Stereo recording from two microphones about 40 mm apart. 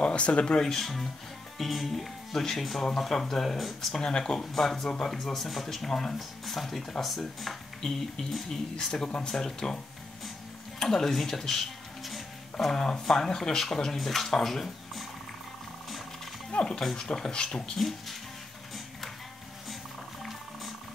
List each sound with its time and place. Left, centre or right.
0.0 s speech: left
0.6 s speech: centre
1.6 s speech: centre
8.7 s speech: centre
10.8 s speech: centre
16.5 s speech: left